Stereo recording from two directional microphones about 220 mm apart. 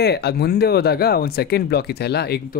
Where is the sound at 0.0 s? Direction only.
45° left (ahead or behind).